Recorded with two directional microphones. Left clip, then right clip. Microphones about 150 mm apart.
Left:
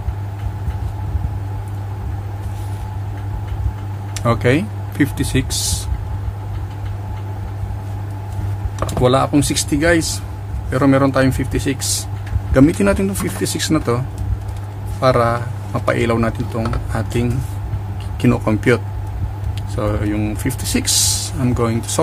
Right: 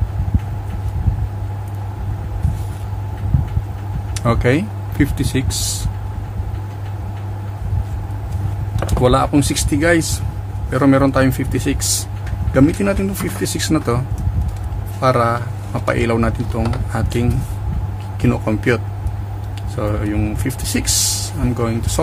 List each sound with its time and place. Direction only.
4.1 s speech: centre (ahead or behind)
9.0 s speech: centre (ahead or behind)
12.6 s speech: 20° left (ahead or behind)
13.5 s speech: centre (ahead or behind)
18.2 s speech: 15° left (ahead or behind)